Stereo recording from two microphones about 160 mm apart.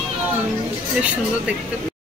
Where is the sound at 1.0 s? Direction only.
10° right (ahead or behind).